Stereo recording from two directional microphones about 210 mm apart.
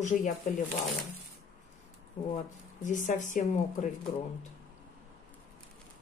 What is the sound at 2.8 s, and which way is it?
Speech, 35° left (ahead or behind).